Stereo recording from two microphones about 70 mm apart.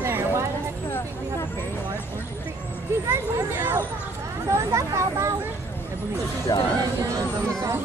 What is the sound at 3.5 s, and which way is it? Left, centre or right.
Speech, right.